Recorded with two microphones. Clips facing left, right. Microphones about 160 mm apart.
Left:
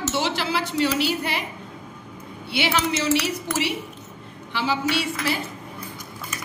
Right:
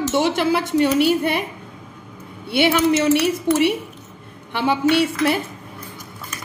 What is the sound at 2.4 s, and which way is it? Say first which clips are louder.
Speech: right 7 dB; 55° right (ahead or behind).